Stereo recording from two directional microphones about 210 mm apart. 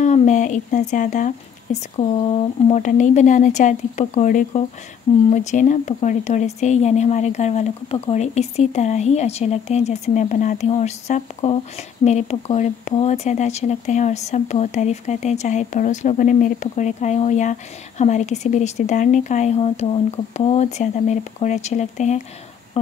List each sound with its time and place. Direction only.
0.0 s speech: 35° left (ahead or behind)